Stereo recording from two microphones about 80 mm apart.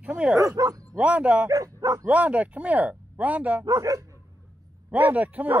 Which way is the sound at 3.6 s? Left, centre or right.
Right.